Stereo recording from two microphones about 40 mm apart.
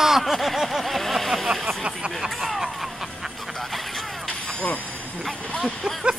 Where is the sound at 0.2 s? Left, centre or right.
Centre.